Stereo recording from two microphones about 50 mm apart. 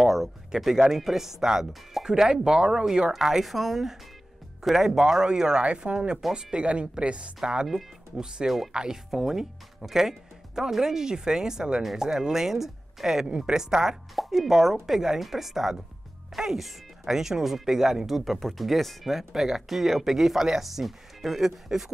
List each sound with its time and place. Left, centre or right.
0.0 s speech: centre; by 7.2 s right
7.6 s speech: centre
14.1 s speech: centre